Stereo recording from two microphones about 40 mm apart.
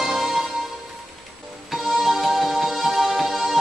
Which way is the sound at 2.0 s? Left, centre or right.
Centre.